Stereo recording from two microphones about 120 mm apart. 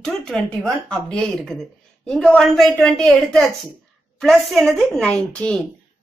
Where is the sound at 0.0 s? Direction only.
5° left (ahead or behind).